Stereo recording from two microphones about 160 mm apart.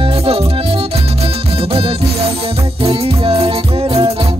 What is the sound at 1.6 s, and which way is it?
Music, 35° right (ahead or behind).